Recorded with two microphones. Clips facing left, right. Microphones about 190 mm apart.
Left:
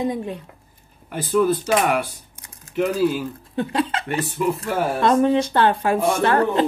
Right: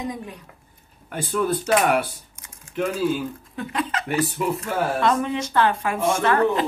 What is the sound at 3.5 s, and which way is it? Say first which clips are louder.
Speech: left 5 dB; 30° left (ahead or behind).